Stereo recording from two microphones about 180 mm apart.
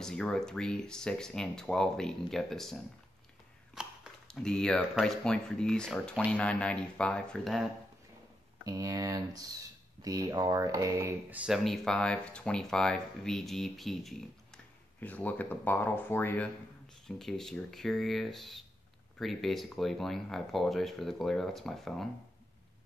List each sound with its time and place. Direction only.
0.0 s speech: 5° left (ahead or behind)
8.6 s speech: 20° right (ahead or behind); by 22.0 s centre (ahead or behind)